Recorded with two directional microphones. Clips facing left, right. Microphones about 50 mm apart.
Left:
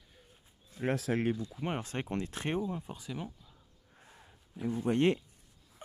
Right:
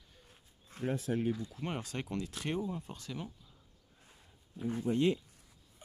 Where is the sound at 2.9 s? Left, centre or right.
Centre.